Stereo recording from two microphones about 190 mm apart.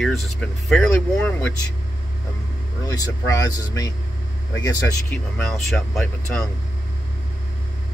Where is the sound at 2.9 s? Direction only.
20° left (ahead or behind).